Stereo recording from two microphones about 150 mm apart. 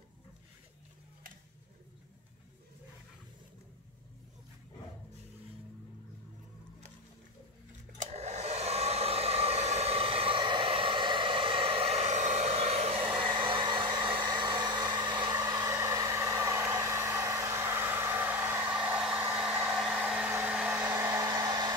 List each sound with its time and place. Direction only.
8.0 s hair dryer: 50° right (ahead or behind); by 21.7 s 25° right (ahead or behind)